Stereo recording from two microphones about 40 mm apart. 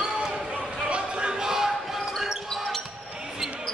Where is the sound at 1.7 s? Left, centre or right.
Centre.